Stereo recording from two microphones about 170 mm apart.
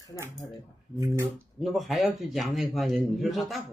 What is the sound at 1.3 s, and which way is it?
Speech, centre (ahead or behind).